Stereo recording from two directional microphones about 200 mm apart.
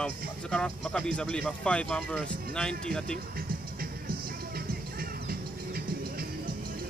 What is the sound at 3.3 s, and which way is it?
Music, 50° right (ahead or behind).